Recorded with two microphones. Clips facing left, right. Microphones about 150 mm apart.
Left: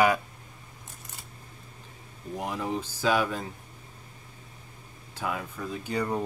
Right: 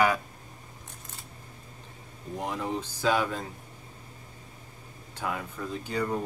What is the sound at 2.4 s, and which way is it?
Speech, 10° left (ahead or behind).